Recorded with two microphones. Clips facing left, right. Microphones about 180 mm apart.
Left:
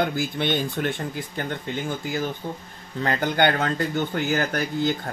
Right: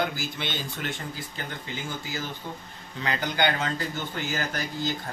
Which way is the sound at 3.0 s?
50° left (ahead or behind).